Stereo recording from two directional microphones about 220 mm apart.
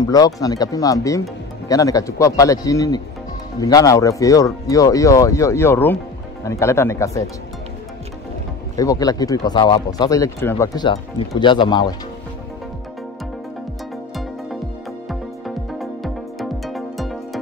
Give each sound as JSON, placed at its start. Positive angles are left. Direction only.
{"t": 0.0, "sound": "speech", "side_deg": 15}
{"t": 8.7, "sound": "speech", "side_deg": 15}
{"t": 15.0, "sound": "music", "side_deg": 0}